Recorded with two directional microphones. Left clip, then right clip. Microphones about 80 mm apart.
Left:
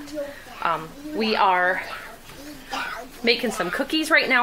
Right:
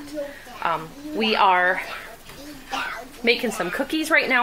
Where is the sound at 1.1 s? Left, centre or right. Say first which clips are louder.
Right 2 dB; right.